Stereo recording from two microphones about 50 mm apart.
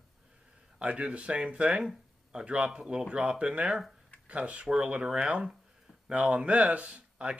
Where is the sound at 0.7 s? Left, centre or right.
Right.